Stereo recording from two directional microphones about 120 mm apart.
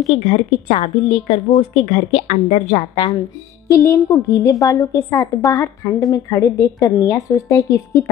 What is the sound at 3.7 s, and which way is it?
A woman's voice, 25° left (ahead or behind).